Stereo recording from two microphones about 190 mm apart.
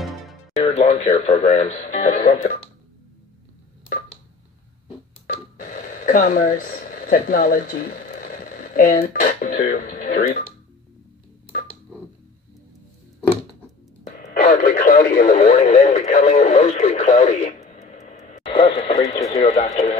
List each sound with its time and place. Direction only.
0.7 s speech: 35° left (ahead or behind)
5.2 s telephone dialing: 45° left (ahead or behind)
14.1 s radio: 45° left (ahead or behind)
19.3 s speech: 35° left (ahead or behind)